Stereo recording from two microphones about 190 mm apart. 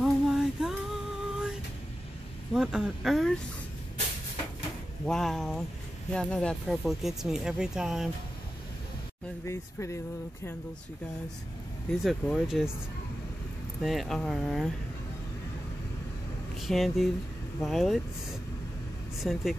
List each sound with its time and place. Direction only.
0.0 s a sound: centre (ahead or behind)
2.5 s speech: 5° right (ahead or behind)
5.0 s speech: centre (ahead or behind)
9.5 s speech: 15° left (ahead or behind)
12.0 s speech: centre (ahead or behind)
13.8 s speech: centre (ahead or behind)
16.6 s speech: centre (ahead or behind)
19.1 s speech: centre (ahead or behind)